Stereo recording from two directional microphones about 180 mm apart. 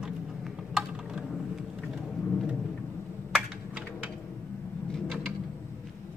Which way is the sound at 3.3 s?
5° right (ahead or behind).